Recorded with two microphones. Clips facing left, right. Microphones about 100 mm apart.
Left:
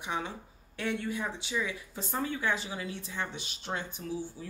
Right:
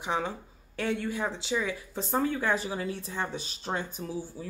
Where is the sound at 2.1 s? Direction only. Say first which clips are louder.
Right 4 dB; 40° right (ahead or behind).